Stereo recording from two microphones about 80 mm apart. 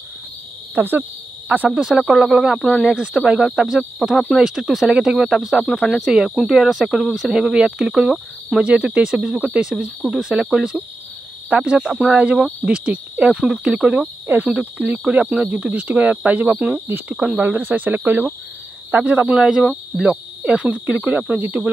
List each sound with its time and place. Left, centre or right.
0.7 s speech: right
14.2 s speech: right
19.2 s speech: centre
21.3 s speech: centre